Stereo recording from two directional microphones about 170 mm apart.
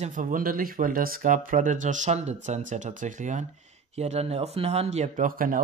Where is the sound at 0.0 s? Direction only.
50° right (ahead or behind).